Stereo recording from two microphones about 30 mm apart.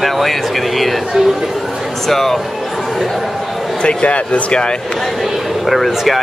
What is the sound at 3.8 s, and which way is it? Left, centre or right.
Speech, left.